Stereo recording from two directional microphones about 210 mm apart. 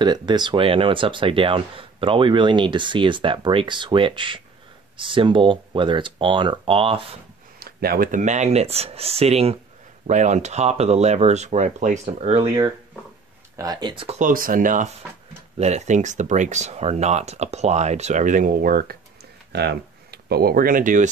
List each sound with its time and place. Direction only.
0.0 s speech: 20° right (ahead or behind)
7.5 s speech: 45° right (ahead or behind)
13.6 s speech: 20° right (ahead or behind); by 21.1 s 40° right (ahead or behind)